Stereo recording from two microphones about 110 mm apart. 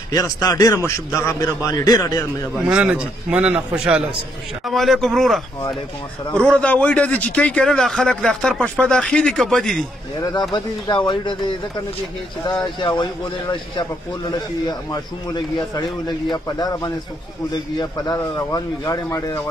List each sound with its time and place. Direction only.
0.1 s speech: 35° left (ahead or behind)
2.5 s a man's voice: 10° right (ahead or behind)
4.6 s a man's voice: centre (ahead or behind)
6.3 s a man's voice: 10° left (ahead or behind)
10.5 s speech: 45° left (ahead or behind)
12.6 s speech: 45° left (ahead or behind)
18.1 s speech: 30° left (ahead or behind)